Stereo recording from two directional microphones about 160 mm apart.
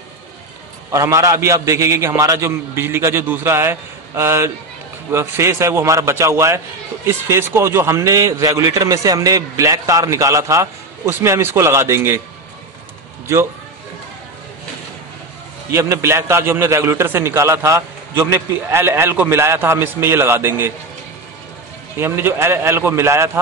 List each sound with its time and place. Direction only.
0.9 s a man's voice: 20° right (ahead or behind)
13.3 s a man's voice: 20° right (ahead or behind)
15.7 s a man's voice: 20° right (ahead or behind)
21.9 s a man's voice: 15° right (ahead or behind)